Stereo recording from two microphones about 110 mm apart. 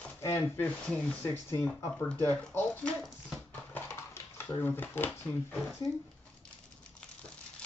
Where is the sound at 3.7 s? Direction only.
20° left (ahead or behind).